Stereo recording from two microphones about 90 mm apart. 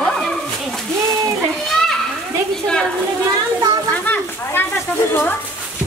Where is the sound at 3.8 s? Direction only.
15° left (ahead or behind).